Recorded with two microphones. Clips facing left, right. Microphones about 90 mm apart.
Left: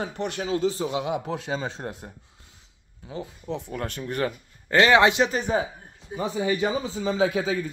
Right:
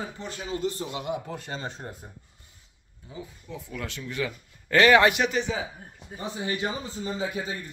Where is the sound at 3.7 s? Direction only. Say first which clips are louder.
Left 5 dB; 45° left (ahead or behind).